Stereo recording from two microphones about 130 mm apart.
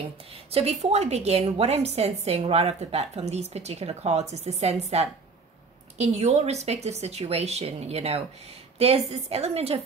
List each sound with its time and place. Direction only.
0.5 s a woman's voice: 50° right (ahead or behind)